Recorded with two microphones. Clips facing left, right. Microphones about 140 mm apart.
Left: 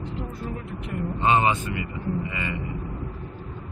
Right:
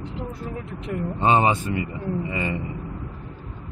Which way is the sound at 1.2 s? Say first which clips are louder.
Right 2 dB; 35° right (ahead or behind).